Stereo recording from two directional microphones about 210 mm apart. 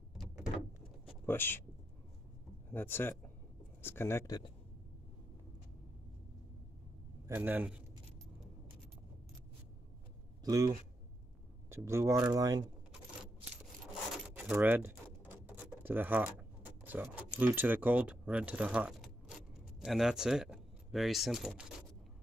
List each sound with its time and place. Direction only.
1.0 s a sound: 10° left (ahead or behind)
2.7 s speech: 10° left (ahead or behind)
7.2 s speech: 10° right (ahead or behind)
10.4 s speech: 15° right (ahead or behind)
14.2 s speech: 5° right (ahead or behind)
15.2 s a sound: 10° right (ahead or behind)
17.4 s speech: 10° right (ahead or behind)